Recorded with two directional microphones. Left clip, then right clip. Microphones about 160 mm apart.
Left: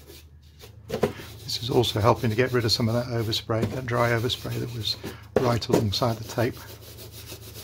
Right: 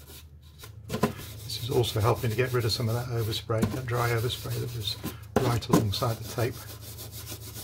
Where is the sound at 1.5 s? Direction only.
45° left (ahead or behind).